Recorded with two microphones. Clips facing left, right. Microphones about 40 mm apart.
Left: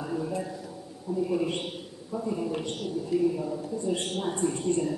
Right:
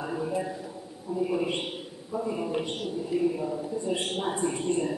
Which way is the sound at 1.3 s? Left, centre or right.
Centre.